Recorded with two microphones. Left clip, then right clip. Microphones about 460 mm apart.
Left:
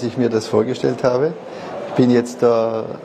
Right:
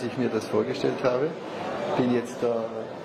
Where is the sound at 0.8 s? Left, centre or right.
Left.